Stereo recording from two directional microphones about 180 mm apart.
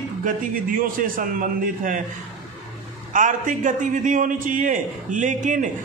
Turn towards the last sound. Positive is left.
turn(degrees=-45)  # may be behind; listen again after turning